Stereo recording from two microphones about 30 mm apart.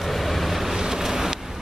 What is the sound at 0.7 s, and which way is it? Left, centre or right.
Vehicle, centre.